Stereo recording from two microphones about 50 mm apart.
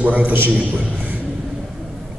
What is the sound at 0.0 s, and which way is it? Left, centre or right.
A man's voice, right.